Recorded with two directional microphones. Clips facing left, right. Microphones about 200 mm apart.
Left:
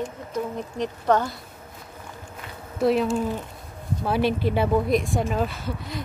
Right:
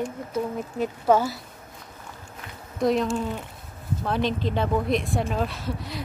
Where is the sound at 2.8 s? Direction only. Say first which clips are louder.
Left 2 dB; 5° left (ahead or behind).